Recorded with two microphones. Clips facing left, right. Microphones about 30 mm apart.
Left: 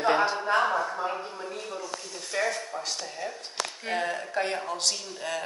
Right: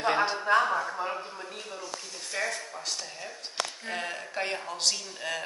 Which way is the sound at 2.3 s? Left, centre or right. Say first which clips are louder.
Left 4 dB; centre.